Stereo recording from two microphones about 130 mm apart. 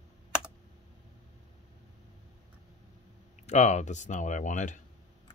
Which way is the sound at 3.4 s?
60° left (ahead or behind).